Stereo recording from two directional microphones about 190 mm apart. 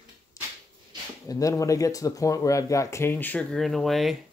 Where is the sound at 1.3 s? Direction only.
15° left (ahead or behind).